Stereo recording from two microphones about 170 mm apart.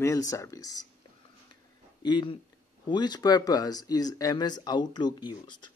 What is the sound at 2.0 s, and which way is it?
Speech, 25° left (ahead or behind).